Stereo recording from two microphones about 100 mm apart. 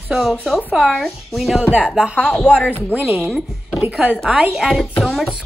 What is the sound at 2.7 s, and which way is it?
Speech, 20° left (ahead or behind).